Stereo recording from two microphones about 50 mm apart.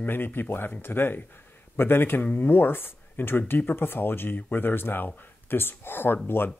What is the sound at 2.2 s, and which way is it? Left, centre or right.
Speech, left.